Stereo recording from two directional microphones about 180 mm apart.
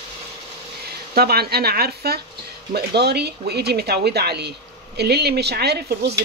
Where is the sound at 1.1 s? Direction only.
60° right (ahead or behind).